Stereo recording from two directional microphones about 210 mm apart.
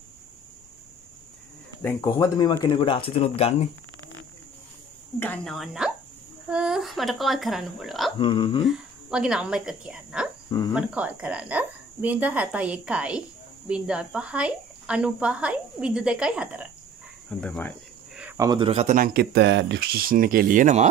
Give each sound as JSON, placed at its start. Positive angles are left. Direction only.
{"t": 1.8, "sound": "speech", "side_deg": 10}
{"t": 5.2, "sound": "a woman's voice", "side_deg": 5}
{"t": 8.2, "sound": "speech", "side_deg": 20}
{"t": 8.6, "sound": "a woman's voice", "side_deg": -5}
{"t": 17.3, "sound": "speech", "side_deg": 5}
{"t": 18.4, "sound": "speech", "side_deg": -20}
{"t": 19.3, "sound": "speech", "side_deg": -55}